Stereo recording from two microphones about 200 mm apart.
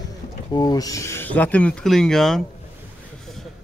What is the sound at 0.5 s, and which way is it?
Speech, 20° left (ahead or behind).